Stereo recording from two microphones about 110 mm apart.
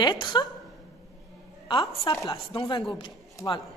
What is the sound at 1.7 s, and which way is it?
Speech, 45° left (ahead or behind).